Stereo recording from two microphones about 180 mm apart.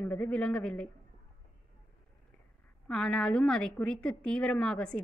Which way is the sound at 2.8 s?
5° left (ahead or behind).